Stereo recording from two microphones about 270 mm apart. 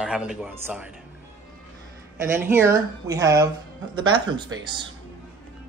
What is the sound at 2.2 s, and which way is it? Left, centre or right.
Speech, centre.